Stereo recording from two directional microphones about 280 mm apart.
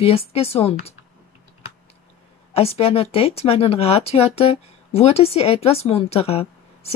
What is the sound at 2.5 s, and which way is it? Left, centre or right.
A woman's voice, left.